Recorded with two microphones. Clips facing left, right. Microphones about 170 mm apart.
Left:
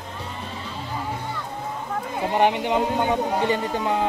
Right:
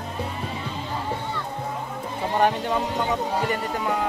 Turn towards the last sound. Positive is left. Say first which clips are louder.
# left 2 dB
turn(degrees=25)  # may be behind; listen again after turning